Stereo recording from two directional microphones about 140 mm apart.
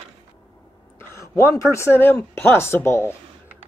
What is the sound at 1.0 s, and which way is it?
Speech, 20° left (ahead or behind).